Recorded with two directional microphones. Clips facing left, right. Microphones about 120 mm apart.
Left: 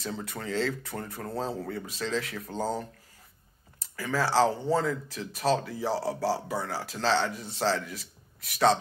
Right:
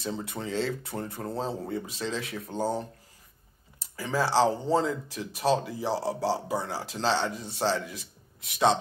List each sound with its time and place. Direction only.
0.0 s speech: 20° right (ahead or behind)
3.9 s speech: 20° right (ahead or behind)